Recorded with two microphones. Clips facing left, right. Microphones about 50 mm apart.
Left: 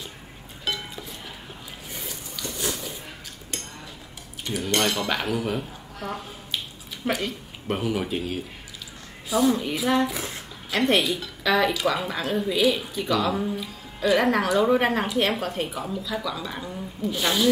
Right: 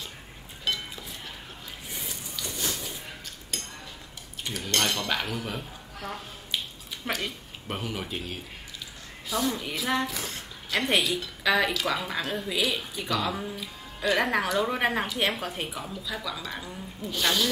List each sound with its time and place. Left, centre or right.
0.7 s music: centre
4.5 s speech: centre
10.0 s speech: centre